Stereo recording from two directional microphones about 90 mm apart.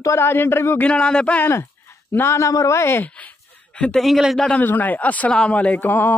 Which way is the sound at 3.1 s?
15° left (ahead or behind).